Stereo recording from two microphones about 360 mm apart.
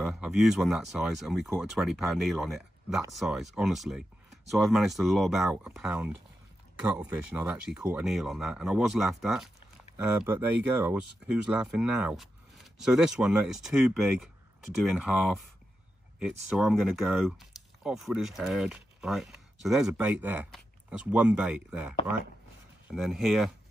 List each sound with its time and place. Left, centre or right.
0.0 s speech: centre
16.4 s speech: centre